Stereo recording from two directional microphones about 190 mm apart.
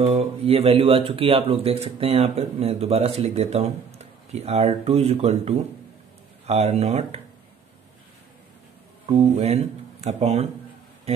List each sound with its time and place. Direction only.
0.0 s speech: 30° right (ahead or behind)
9.0 s speech: 35° right (ahead or behind)